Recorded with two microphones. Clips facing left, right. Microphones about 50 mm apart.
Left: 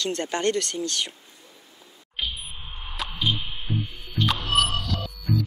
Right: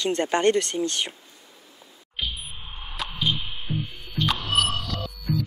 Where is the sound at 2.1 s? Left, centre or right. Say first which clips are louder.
Even; centre.